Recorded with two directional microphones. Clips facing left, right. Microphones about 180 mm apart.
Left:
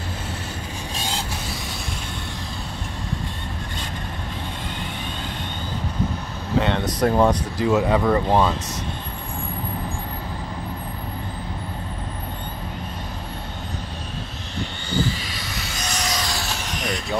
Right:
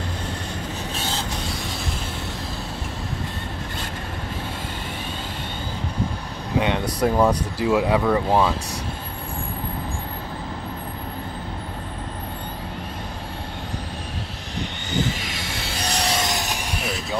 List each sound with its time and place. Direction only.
0.9 s vehicle: 15° left (ahead or behind)
6.6 s air conditioning: 10° right (ahead or behind)
7.2 s speech: 10° right (ahead or behind)
14.9 s a sound: 20° right (ahead or behind); by 17.2 s 5° right (ahead or behind)